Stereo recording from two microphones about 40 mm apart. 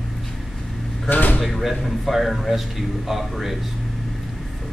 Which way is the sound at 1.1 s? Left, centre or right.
Left.